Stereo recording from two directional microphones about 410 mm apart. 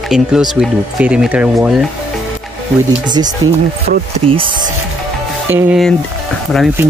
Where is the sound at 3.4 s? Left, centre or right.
Centre.